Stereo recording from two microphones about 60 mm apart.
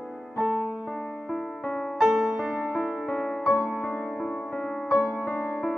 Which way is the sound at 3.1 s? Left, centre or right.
Centre.